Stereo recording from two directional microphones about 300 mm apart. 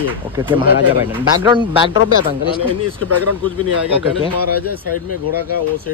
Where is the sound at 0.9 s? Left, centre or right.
Centre.